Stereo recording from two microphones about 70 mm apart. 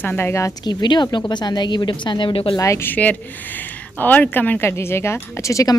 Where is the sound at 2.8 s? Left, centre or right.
Left.